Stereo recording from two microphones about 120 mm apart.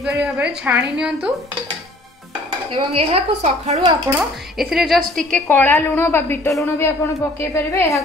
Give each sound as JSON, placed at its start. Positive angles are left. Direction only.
{"t": 0.0, "sound": "a woman's voice", "side_deg": -5}
{"t": 2.7, "sound": "a woman's voice", "side_deg": -50}
{"t": 4.2, "sound": "a woman's voice", "side_deg": -5}